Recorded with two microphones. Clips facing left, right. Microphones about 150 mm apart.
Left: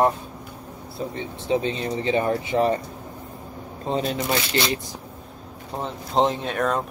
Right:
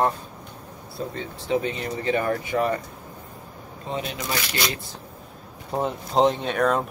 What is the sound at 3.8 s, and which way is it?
Speech, 35° left (ahead or behind).